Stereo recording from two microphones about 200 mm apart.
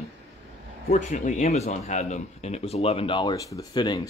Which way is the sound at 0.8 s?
35° left (ahead or behind).